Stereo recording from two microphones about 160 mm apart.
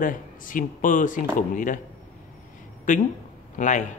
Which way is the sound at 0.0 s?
55° left (ahead or behind).